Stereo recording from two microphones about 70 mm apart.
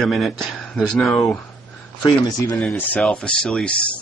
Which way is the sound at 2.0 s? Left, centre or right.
Left.